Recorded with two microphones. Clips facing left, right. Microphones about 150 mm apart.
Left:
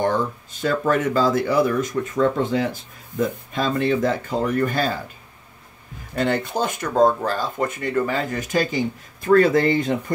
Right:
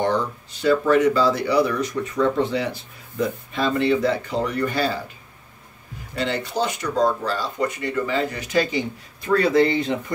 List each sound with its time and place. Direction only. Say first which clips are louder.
0.0 s speech: left 1 dB; 45° left (ahead or behind)
6.1 s speech: left 2 dB; 50° left (ahead or behind)